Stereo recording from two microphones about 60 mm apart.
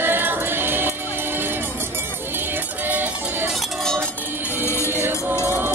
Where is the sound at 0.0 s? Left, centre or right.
Right.